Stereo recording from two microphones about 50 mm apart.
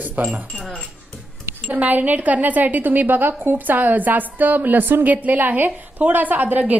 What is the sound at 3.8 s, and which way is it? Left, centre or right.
A woman's voice, right.